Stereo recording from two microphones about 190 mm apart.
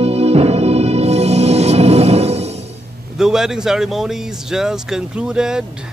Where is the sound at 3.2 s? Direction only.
5° right (ahead or behind).